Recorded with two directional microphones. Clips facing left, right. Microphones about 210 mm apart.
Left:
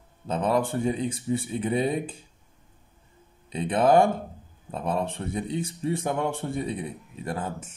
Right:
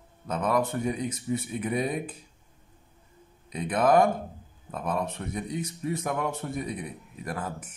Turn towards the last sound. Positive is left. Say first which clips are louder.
# left 3 dB
turn(degrees=25)  # may be behind; listen again after turning